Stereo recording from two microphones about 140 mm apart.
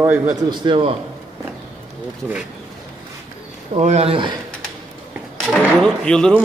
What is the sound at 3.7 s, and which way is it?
Speech, 50° right (ahead or behind).